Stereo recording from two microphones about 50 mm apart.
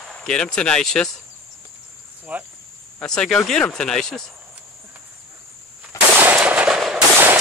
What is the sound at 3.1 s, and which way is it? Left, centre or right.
Speech, centre.